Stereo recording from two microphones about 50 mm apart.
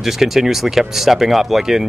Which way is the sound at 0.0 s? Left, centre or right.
Centre.